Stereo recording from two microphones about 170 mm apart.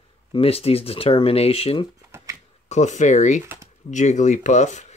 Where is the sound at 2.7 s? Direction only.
45° left (ahead or behind).